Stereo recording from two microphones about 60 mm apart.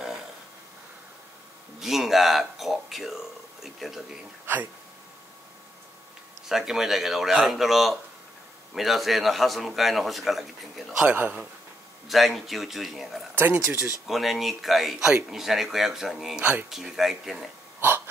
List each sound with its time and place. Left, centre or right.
1.8 s a man's voice: centre
6.5 s a man's voice: centre
10.9 s a man's voice: centre
12.1 s a man's voice: centre
13.3 s speech: right
14.0 s a man's voice: centre
17.7 s hiccup: right